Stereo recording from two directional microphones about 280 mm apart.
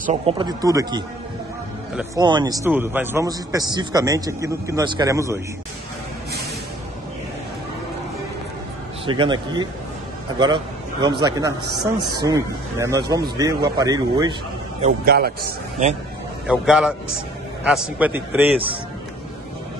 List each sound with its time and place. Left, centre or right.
0.0 s a man's voice: right
2.1 s a man's voice: centre
9.0 s a man's voice: centre
14.8 s a man's voice: right
16.4 s a man's voice: centre